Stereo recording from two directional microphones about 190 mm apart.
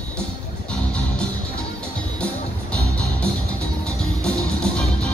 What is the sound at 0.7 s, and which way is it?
Music, 5° left (ahead or behind).